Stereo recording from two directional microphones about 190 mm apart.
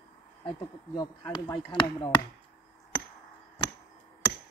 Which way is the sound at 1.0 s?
20° left (ahead or behind).